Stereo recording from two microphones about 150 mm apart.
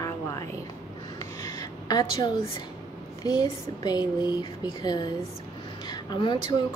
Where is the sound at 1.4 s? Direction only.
25° left (ahead or behind).